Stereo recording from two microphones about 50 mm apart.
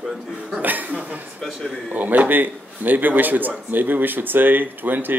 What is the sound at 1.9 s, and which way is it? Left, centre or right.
Speech, right.